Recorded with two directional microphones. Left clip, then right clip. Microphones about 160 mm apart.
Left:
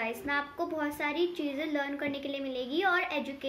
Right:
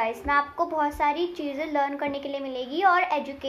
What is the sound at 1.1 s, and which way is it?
Speech, 25° right (ahead or behind).